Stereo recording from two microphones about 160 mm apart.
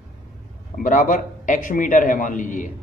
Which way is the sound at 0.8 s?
55° left (ahead or behind).